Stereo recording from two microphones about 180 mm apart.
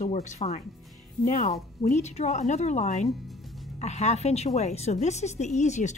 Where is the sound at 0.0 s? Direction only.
40° left (ahead or behind).